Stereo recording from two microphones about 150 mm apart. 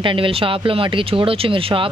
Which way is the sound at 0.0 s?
35° right (ahead or behind).